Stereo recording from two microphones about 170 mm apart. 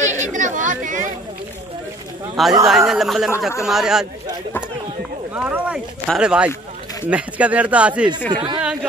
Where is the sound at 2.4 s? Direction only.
Centre (ahead or behind).